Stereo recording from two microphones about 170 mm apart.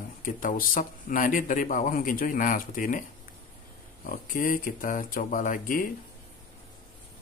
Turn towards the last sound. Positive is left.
turn(degrees=50)  # may be behind; listen again after turning